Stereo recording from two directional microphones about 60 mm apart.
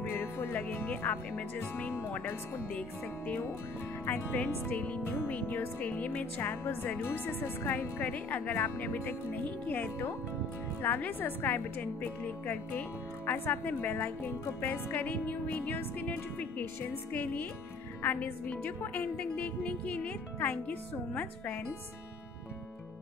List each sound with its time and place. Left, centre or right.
0.2 s speech: left
4.0 s a woman's voice: left